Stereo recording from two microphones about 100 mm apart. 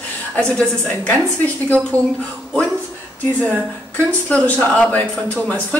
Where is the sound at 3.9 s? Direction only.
15° left (ahead or behind).